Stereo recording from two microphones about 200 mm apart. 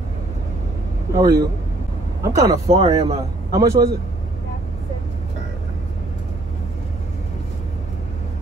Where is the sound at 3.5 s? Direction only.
15° right (ahead or behind).